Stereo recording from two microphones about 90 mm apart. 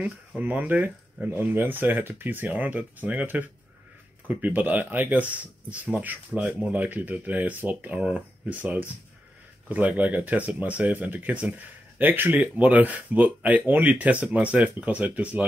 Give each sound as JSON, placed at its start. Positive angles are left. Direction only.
{"t": 0.0, "sound": "speech", "side_deg": -15}